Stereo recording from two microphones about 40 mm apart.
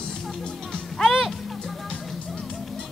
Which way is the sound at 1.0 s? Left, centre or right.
Centre.